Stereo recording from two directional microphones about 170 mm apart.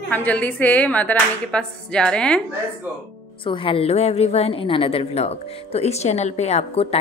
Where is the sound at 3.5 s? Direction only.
30° left (ahead or behind).